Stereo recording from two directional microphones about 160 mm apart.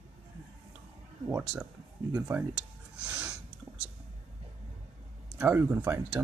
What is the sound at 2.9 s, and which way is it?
Snort, 5° right (ahead or behind).